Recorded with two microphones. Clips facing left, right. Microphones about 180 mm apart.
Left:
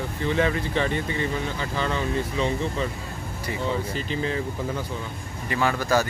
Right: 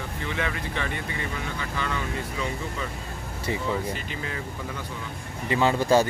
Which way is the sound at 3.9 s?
30° left (ahead or behind).